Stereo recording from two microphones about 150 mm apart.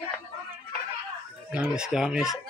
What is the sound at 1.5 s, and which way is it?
Speech, 5° right (ahead or behind).